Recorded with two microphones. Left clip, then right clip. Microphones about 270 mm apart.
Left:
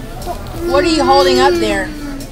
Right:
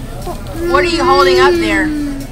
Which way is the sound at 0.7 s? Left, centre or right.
Centre.